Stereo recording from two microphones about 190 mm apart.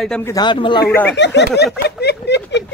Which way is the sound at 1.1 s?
65° left (ahead or behind).